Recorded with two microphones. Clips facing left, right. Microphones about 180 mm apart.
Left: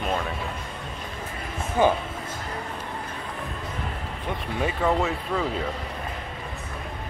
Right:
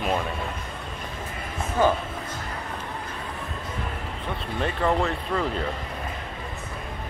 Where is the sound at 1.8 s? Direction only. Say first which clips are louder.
Left 1 dB; 15° left (ahead or behind).